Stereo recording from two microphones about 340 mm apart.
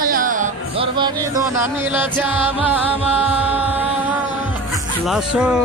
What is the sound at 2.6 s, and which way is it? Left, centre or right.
Music, centre.